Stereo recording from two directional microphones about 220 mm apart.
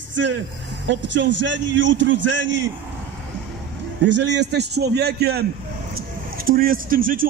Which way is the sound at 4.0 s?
50° right (ahead or behind).